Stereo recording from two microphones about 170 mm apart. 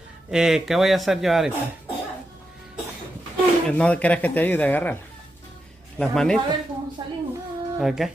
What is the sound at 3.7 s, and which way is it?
Speech, 10° left (ahead or behind).